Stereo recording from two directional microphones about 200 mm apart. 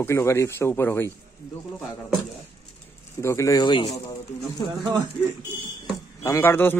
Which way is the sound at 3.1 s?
15° left (ahead or behind).